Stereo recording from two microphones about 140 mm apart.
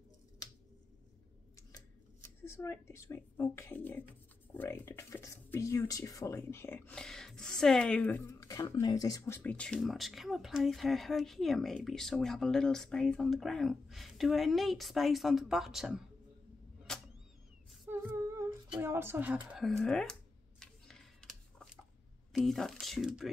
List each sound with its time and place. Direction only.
2.4 s speech: 20° left (ahead or behind); by 16.0 s 5° right (ahead or behind)
16.9 s a sound: 5° left (ahead or behind)
17.8 s female singing: 20° right (ahead or behind)
18.8 s a woman's voice: 15° right (ahead or behind)
19.6 s computer keyboard: 5° left (ahead or behind)
22.3 s speech: centre (ahead or behind)